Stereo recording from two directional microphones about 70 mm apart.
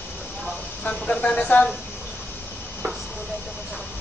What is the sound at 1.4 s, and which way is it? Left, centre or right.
Speech, centre.